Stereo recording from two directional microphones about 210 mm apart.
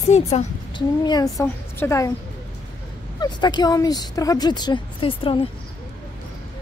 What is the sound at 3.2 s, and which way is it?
Speech, 20° left (ahead or behind).